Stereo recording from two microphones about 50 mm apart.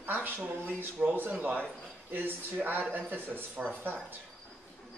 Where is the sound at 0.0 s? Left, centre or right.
Right.